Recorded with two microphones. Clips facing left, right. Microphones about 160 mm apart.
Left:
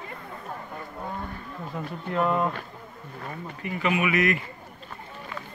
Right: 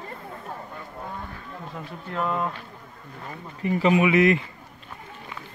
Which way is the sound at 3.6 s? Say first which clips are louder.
Right 6 dB; 30° right (ahead or behind).